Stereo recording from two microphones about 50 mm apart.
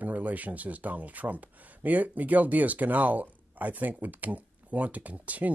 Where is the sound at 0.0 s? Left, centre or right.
Right.